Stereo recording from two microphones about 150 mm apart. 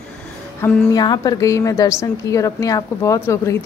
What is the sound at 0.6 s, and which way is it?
Speech, 15° left (ahead or behind).